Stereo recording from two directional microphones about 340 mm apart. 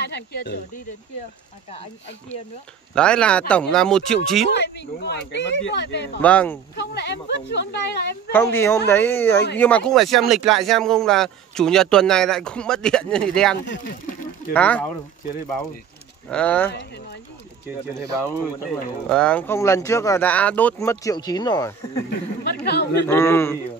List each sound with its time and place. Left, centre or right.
0.0 s speech: left
2.9 s speech: centre
4.5 s speech: left
6.2 s speech: centre
6.7 s speech: left
8.3 s speech: centre
13.7 s speech: left
14.5 s speech: centre
16.3 s speech: centre
16.7 s speech: left
19.0 s speech: centre
22.4 s speech: left
23.0 s speech: centre